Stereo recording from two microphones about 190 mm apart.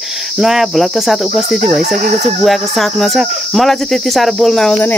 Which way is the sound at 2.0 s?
40° right (ahead or behind).